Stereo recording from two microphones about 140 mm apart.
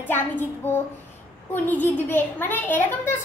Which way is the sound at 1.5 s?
15° left (ahead or behind).